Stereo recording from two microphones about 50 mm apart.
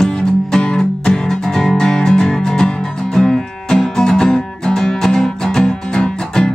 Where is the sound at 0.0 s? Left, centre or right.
Centre.